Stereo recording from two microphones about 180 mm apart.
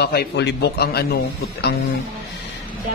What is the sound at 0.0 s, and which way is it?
A man's voice, 60° left (ahead or behind).